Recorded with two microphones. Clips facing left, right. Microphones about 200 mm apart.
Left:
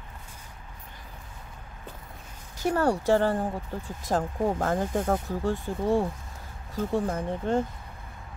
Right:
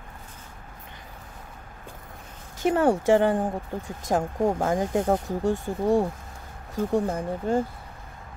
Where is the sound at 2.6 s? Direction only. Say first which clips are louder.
Right 3 dB; 20° right (ahead or behind).